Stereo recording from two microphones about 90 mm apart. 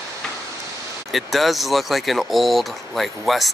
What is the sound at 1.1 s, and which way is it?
Speech, centre (ahead or behind).